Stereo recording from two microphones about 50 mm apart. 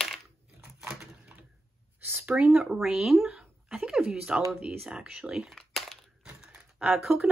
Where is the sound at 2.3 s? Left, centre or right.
Right.